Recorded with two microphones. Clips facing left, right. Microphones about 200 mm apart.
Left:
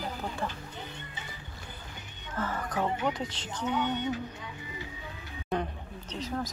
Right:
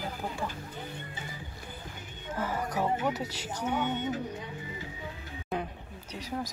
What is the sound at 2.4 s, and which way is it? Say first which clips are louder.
Music: even; 10° right (ahead or behind).